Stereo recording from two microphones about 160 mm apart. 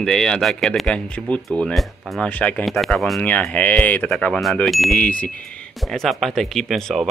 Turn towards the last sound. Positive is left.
turn(degrees=0)  # may be behind; listen again after turning